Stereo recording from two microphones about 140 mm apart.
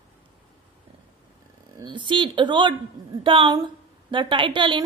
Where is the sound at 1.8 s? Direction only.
35° right (ahead or behind).